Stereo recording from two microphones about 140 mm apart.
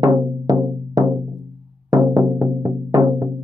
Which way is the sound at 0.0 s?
25° right (ahead or behind).